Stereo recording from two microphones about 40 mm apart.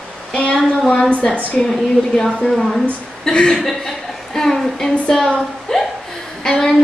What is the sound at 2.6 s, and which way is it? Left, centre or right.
Speech, centre.